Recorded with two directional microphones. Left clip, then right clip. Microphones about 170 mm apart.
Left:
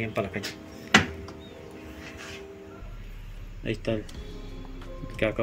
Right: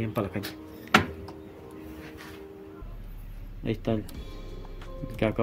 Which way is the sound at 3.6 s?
50° right (ahead or behind).